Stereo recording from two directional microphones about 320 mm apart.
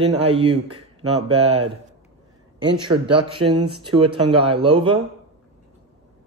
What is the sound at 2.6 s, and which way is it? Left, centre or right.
Speech, centre.